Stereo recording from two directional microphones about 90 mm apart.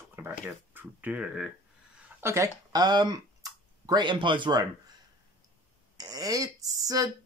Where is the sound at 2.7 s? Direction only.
50° right (ahead or behind).